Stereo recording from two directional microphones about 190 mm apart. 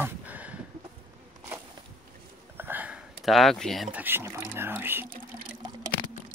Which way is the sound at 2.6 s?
10° right (ahead or behind).